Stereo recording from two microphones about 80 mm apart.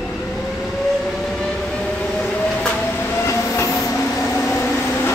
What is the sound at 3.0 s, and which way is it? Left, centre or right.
Train, left.